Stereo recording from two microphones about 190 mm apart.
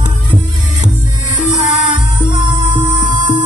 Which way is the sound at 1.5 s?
25° right (ahead or behind).